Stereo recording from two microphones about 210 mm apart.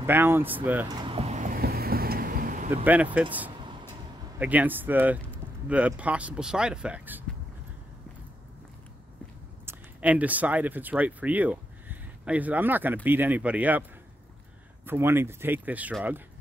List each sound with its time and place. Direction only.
0.0 s speech: 10° right (ahead or behind)
1.0 s vehicle: 30° right (ahead or behind)
2.7 s speech: 10° right (ahead or behind)
9.7 s speech: 5° right (ahead or behind)
14.9 s speech: 10° right (ahead or behind)